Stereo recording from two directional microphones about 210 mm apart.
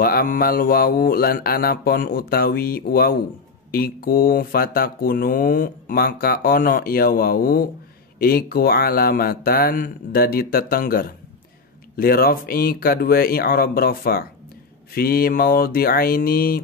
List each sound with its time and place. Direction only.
0.0 s speech: 45° left (ahead or behind)